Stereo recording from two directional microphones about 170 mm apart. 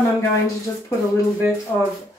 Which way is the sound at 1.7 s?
10° left (ahead or behind).